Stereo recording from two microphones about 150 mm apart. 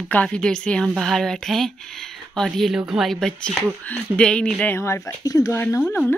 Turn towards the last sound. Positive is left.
turn(degrees=10)  # may be behind; listen again after turning